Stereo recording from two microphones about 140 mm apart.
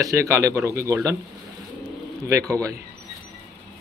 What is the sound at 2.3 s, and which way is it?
Speech, 25° right (ahead or behind).